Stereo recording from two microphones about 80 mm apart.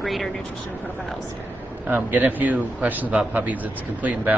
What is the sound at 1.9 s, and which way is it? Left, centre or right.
A man's voice, right.